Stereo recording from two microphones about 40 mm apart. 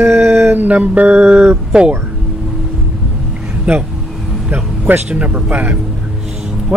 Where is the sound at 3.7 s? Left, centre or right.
Right.